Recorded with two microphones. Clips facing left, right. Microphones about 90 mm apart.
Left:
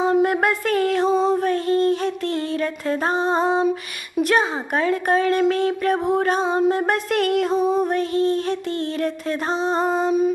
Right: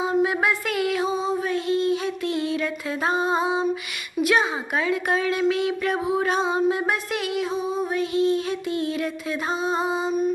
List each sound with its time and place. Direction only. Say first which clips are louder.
0.1 s a sound: left 3 dB; 55° left (ahead or behind)
3.3 s music: left 4 dB; 35° left (ahead or behind)
4.2 s a woman's voice: left 2 dB; 45° left (ahead or behind)
7.6 s a woman's voice: left 5 dB; 65° left (ahead or behind)
9.5 s music: left 4 dB; 35° left (ahead or behind)